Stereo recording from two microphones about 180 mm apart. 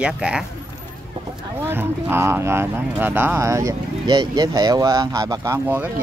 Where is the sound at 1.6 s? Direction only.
10° right (ahead or behind).